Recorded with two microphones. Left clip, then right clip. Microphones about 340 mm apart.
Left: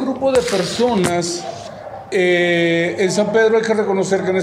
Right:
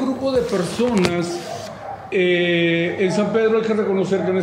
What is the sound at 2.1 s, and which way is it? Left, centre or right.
A man's voice, centre.